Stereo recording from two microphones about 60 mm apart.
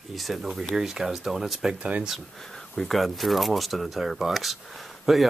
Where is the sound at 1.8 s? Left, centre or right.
Right.